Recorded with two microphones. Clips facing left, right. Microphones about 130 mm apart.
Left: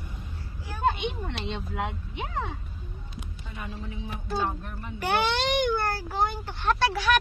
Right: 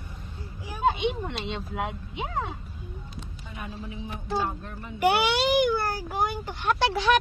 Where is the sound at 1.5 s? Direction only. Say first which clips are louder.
Right 1 dB; centre (ahead or behind).